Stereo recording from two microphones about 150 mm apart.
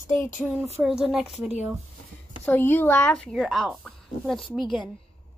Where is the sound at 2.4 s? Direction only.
15° left (ahead or behind).